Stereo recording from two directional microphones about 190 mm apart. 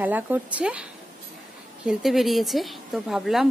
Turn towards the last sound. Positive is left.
turn(degrees=0)  # may be behind; listen again after turning